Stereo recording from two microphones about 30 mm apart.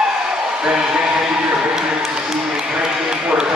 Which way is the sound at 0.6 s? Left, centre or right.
Right.